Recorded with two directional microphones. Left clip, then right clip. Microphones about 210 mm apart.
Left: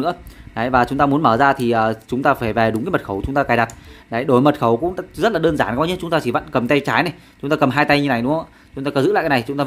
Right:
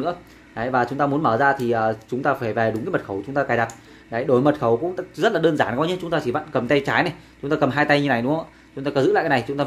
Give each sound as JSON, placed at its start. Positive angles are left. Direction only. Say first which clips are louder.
{"t": 0.0, "sound": "speech", "louder": "left 4 dB", "side_deg": 30}